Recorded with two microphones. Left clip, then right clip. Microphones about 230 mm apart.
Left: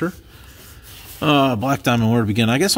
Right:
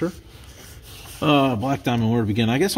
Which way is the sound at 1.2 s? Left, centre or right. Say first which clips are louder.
Left 2 dB; centre.